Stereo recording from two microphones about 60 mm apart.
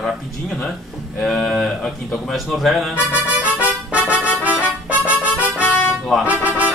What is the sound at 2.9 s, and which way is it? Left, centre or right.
Music, right.